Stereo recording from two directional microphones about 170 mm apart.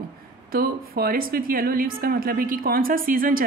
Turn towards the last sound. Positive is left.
turn(degrees=-55)  # may be behind; listen again after turning